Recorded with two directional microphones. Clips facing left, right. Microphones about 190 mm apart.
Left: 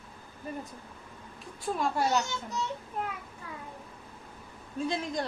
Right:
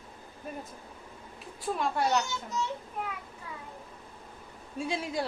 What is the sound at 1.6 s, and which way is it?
Speech, centre (ahead or behind).